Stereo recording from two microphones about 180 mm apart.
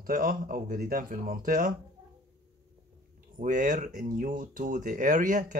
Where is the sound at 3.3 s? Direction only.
45° right (ahead or behind).